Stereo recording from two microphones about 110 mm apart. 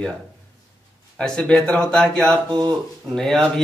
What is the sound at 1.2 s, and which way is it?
A man's voice, 10° left (ahead or behind).